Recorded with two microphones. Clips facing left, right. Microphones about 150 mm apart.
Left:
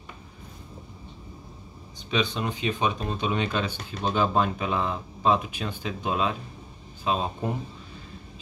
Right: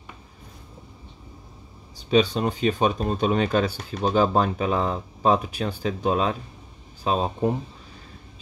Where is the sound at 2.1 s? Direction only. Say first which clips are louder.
Right 7 dB; 40° right (ahead or behind).